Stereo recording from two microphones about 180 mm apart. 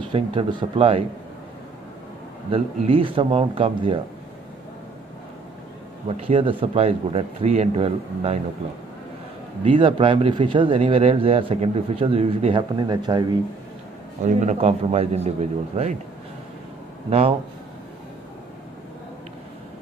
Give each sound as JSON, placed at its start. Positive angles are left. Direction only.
{"t": 0.1, "sound": "speech", "side_deg": -30}
{"t": 2.5, "sound": "speech", "side_deg": -30}
{"t": 6.0, "sound": "speech", "side_deg": -30}
{"t": 9.7, "sound": "speech", "side_deg": -30}
{"t": 14.2, "sound": "speech", "side_deg": -40}
{"t": 17.1, "sound": "speech", "side_deg": -35}